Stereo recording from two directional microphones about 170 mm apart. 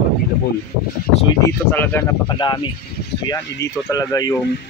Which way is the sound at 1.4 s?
15° left (ahead or behind).